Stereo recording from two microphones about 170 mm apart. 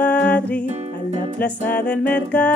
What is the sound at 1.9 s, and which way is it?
Music, 10° left (ahead or behind).